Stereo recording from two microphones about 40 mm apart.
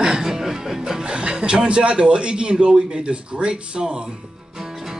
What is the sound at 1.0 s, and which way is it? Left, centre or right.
Speech, right.